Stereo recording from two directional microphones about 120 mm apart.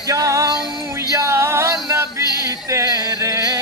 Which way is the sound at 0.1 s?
25° right (ahead or behind).